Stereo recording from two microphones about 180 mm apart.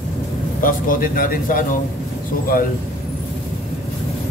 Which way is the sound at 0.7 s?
50° left (ahead or behind).